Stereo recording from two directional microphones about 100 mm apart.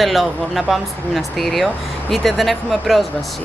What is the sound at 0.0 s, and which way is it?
Speech, centre (ahead or behind).